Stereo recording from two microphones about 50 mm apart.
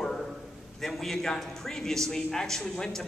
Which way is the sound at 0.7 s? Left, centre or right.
Centre.